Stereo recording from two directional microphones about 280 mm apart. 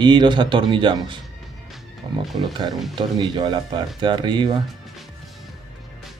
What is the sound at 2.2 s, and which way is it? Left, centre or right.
Speech, centre.